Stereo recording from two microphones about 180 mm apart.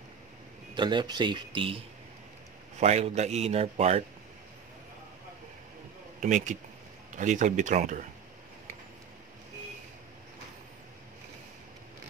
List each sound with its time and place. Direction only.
0.7 s speech: 25° right (ahead or behind)
2.8 s a man's voice: 40° right (ahead or behind)
6.2 s speech: 45° right (ahead or behind)